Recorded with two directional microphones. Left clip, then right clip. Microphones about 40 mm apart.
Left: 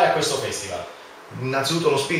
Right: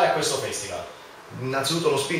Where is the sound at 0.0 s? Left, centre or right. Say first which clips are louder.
Left 2 dB; centre.